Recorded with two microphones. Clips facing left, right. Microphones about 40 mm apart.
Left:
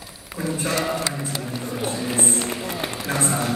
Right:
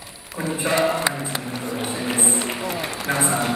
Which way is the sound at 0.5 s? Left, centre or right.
Right.